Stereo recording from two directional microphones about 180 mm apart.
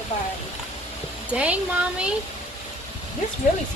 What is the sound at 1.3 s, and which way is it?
Speech, 5° right (ahead or behind).